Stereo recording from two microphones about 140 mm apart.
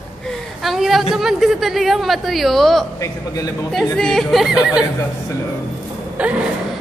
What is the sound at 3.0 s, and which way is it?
Speech, 25° left (ahead or behind).